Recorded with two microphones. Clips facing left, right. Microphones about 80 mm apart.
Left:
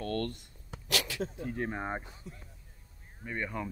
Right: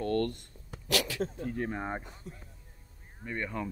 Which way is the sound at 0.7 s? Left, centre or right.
Left.